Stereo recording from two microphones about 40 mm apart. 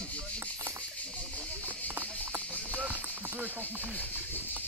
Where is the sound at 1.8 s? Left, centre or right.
Right.